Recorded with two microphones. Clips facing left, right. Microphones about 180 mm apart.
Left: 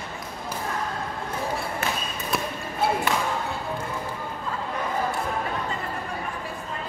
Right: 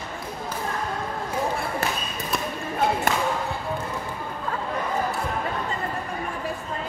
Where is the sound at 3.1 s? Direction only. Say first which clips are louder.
Right 1 dB; 45° right (ahead or behind).